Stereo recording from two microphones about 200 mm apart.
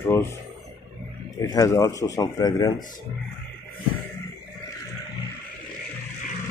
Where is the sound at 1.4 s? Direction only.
15° left (ahead or behind).